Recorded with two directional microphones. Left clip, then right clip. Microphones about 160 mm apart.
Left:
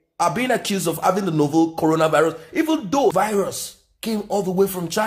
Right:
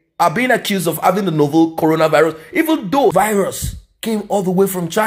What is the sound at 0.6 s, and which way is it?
Speech, 10° left (ahead or behind).